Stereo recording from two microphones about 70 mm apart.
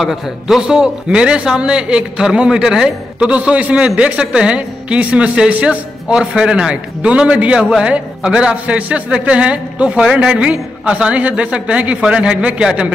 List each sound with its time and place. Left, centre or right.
0.0 s a man's voice: centre